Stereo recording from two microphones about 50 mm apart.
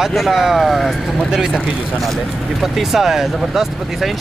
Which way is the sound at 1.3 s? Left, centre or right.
Centre.